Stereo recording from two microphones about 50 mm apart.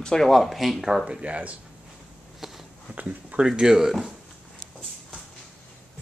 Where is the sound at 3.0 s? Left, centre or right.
Right.